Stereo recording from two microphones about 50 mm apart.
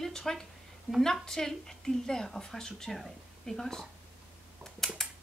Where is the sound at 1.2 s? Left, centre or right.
Centre.